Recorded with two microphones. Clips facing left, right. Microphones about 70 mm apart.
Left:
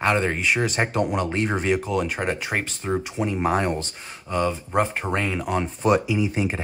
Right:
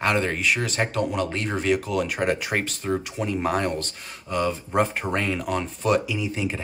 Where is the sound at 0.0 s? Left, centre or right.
Centre.